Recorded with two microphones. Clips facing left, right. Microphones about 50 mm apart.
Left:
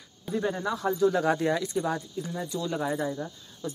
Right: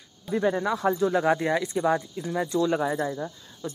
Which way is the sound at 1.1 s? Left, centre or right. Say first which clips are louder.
Right 2 dB; centre.